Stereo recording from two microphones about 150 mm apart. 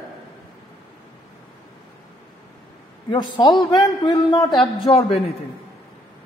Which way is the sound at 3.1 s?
30° left (ahead or behind).